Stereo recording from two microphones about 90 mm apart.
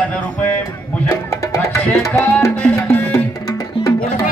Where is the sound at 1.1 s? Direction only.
30° left (ahead or behind).